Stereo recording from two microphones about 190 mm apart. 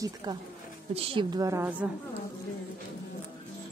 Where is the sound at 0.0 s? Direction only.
20° right (ahead or behind).